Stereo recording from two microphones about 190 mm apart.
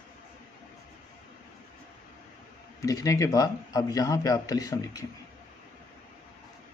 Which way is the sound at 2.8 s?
15° left (ahead or behind).